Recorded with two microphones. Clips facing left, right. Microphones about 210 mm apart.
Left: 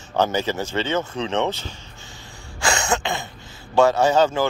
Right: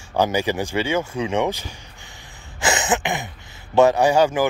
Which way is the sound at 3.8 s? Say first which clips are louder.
Right 1 dB; 15° right (ahead or behind).